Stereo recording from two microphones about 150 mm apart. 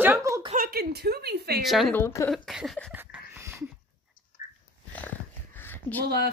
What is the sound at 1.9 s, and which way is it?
Speech, 15° left (ahead or behind).